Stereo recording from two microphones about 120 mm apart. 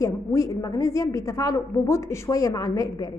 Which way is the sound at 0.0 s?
25° left (ahead or behind).